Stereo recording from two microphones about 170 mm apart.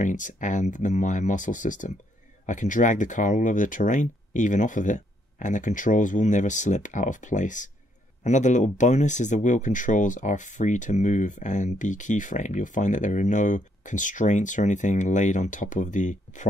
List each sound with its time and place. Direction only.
0.0 s speech: 50° left (ahead or behind)